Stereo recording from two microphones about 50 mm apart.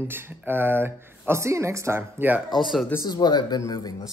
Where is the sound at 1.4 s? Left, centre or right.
Right.